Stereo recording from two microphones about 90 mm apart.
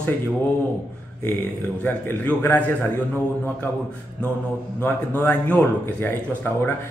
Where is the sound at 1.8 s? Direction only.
20° left (ahead or behind).